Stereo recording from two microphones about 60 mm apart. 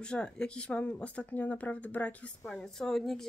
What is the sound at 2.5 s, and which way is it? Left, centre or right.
Speech, centre.